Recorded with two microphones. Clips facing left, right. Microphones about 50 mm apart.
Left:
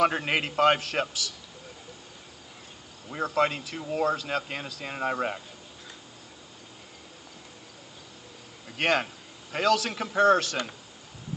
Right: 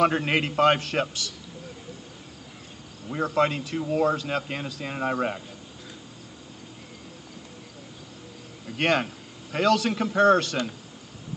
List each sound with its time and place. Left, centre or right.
0.0 s speech: centre
3.1 s speech: centre
8.6 s a man's voice: centre